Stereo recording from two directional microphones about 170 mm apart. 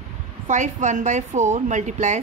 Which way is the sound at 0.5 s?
45° right (ahead or behind).